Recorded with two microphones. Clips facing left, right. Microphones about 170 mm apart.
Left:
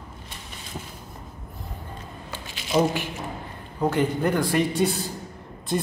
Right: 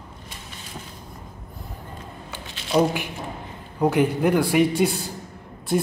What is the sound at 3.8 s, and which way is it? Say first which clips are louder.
Speech: right 3 dB; 10° right (ahead or behind).